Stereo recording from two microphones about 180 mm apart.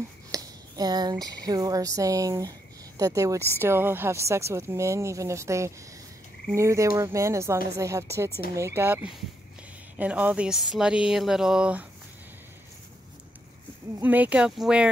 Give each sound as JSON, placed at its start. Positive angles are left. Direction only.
{"t": 0.3, "sound": "a woman's voice", "side_deg": -20}
{"t": 13.9, "sound": "a woman's voice", "side_deg": -10}